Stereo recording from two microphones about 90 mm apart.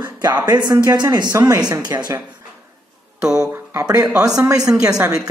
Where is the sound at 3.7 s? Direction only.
35° right (ahead or behind).